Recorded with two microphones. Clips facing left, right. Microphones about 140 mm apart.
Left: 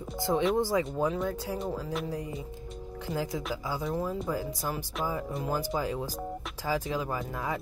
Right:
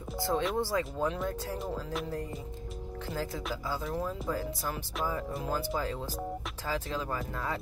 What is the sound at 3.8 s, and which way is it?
Speech, 5° left (ahead or behind).